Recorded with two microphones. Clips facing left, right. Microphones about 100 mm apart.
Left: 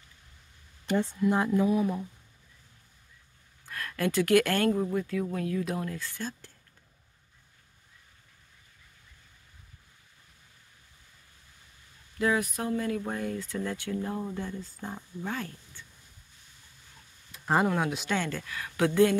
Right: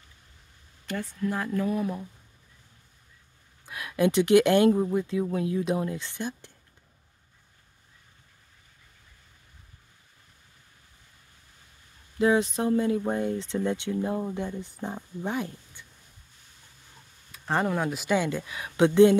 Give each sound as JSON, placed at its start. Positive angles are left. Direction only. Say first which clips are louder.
{"t": 0.8, "sound": "speech", "louder": "left 4 dB", "side_deg": 20}
{"t": 1.5, "sound": "speech", "louder": "left 2 dB", "side_deg": 10}
{"t": 3.6, "sound": "speech", "louder": "right 6 dB", "side_deg": -15}
{"t": 12.2, "sound": "speech", "louder": "right 5 dB", "side_deg": -25}
{"t": 17.5, "sound": "speech", "louder": "even", "side_deg": 5}